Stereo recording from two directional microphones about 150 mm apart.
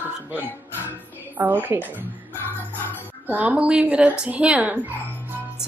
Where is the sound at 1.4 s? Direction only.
10° right (ahead or behind).